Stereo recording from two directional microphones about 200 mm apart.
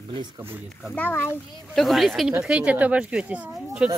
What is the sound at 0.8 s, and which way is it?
Speech, 10° left (ahead or behind).